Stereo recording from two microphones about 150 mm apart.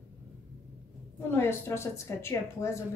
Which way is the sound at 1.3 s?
15° left (ahead or behind).